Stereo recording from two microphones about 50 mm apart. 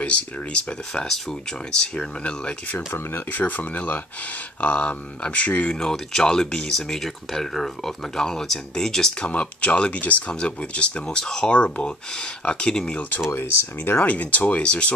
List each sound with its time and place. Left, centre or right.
0.0 s speech: left
2.9 s speech: left
5.8 s speech: centre
9.3 s speech: left
10.4 s speech: left
13.3 s speech: left
13.9 s speech: left